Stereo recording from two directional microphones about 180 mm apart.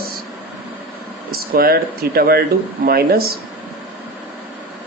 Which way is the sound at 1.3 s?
55° right (ahead or behind).